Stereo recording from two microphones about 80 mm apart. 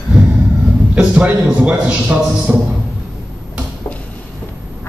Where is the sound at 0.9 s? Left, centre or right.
Centre.